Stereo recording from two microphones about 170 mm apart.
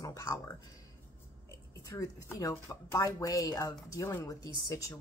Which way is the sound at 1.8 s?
20° left (ahead or behind).